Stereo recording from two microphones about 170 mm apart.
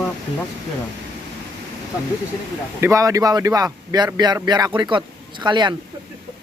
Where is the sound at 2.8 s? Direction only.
15° right (ahead or behind).